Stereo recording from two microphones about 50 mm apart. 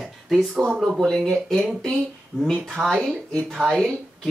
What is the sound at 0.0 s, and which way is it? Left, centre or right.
Speech, centre.